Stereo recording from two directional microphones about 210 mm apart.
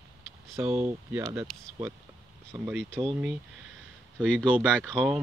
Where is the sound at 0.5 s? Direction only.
5° right (ahead or behind).